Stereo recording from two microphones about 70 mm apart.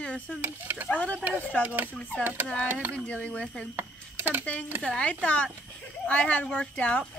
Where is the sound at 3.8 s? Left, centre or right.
Right.